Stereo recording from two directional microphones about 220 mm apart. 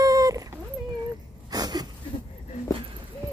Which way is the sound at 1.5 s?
20° right (ahead or behind).